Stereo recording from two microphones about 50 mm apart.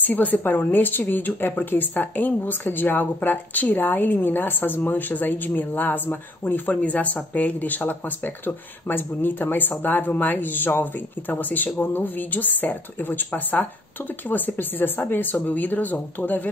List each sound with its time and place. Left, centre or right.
0.0 s a woman's voice: left
6.8 s a woman's voice: left
14.3 s a woman's voice: left